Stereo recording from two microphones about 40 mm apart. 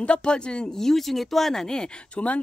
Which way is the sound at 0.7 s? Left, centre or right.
Centre.